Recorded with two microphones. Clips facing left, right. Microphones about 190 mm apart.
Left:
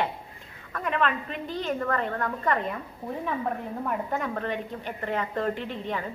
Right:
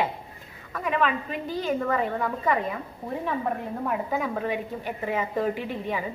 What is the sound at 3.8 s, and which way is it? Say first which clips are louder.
A woman's voice: right 2 dB; 5° right (ahead or behind).